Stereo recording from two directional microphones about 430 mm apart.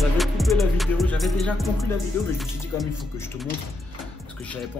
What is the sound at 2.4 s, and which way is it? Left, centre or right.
Speech, centre.